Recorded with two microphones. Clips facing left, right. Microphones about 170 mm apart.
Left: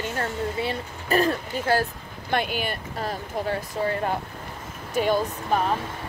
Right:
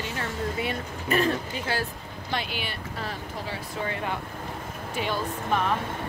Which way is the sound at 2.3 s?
50° left (ahead or behind).